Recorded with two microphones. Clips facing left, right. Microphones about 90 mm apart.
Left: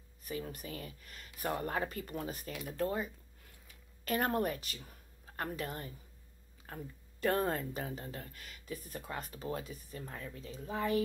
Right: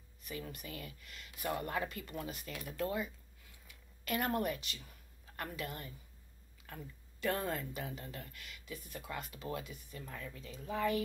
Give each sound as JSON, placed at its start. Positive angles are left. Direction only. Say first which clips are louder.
{"t": 0.2, "sound": "speech", "louder": "left 4 dB", "side_deg": 40}